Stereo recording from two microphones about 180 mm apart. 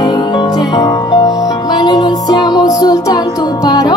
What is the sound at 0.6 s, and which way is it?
Music, 20° left (ahead or behind).